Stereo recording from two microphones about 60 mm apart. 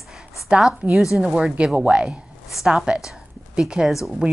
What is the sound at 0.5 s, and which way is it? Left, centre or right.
A woman's voice, centre.